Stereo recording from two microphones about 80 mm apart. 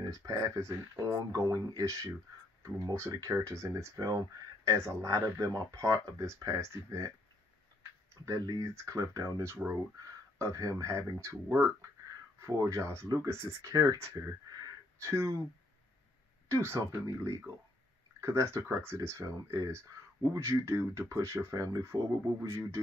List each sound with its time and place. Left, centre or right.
0.0 s speech: right
8.1 s speech: right
15.0 s speech: right
16.4 s speech: right